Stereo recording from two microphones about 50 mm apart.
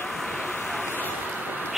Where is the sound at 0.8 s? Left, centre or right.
Left.